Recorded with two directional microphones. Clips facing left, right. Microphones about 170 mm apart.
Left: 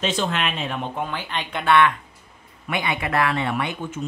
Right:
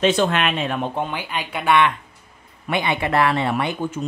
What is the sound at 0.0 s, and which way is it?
Speech, 65° right (ahead or behind).